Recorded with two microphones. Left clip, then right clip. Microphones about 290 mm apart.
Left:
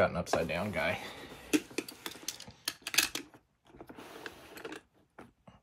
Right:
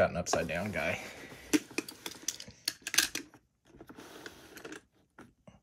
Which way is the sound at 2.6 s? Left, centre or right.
Centre.